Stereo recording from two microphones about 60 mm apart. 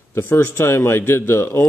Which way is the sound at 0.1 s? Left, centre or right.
Left.